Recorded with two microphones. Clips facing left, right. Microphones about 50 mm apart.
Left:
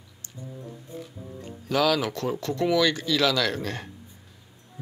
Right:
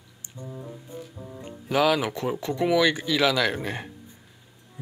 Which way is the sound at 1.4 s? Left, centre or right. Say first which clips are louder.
Right 1 dB; centre.